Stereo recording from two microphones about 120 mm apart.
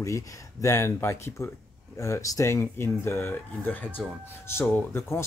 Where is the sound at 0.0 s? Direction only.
25° left (ahead or behind).